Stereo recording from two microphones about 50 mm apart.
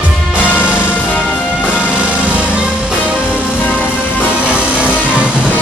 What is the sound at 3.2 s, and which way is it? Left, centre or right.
Music, left.